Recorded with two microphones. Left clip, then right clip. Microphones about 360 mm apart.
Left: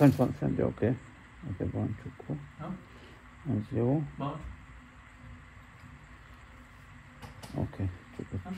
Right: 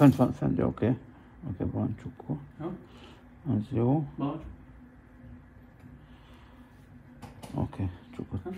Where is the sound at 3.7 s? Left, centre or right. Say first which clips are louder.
Right 2 dB; right.